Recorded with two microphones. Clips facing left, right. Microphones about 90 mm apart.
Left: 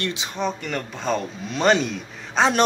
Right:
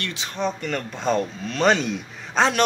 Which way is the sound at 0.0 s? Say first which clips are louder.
Left 3 dB; 15° left (ahead or behind).